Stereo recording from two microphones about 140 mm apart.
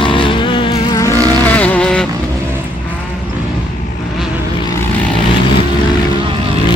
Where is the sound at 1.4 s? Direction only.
10° left (ahead or behind).